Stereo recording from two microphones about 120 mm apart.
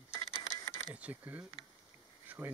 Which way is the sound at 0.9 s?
15° right (ahead or behind).